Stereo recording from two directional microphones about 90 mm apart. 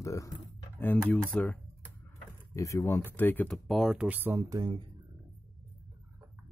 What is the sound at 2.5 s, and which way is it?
Speech, 35° left (ahead or behind).